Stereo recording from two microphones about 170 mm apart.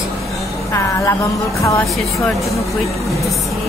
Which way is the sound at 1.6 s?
15° left (ahead or behind).